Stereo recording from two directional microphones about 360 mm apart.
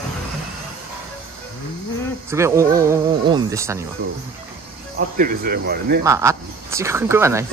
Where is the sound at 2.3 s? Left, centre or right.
Centre.